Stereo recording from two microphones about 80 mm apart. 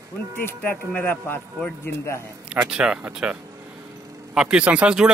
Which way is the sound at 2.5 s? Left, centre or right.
Centre.